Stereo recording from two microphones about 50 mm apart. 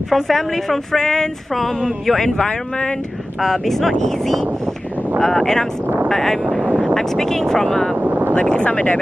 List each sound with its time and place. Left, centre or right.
0.1 s speech: centre
8.0 s vehicle: right
8.4 s speech: left